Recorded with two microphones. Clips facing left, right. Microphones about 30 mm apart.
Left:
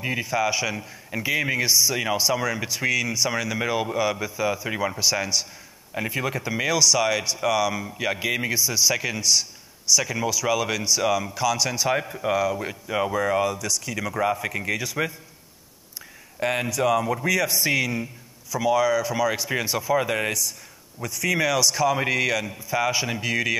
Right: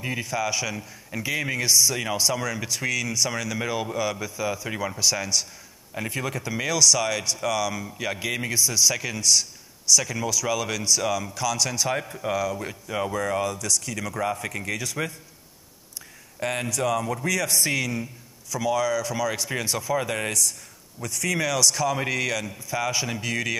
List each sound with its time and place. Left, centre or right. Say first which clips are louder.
0.0 s speech: left 3 dB; centre
16.3 s speech: left 3 dB; centre